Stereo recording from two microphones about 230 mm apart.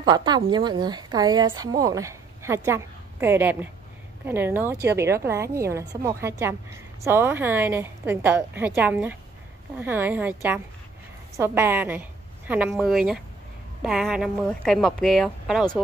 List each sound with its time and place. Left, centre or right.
0.0 s a woman's voice: centre